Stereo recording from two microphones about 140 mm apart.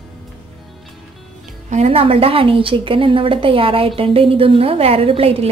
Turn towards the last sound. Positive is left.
turn(degrees=-45)  # may be behind; listen again after turning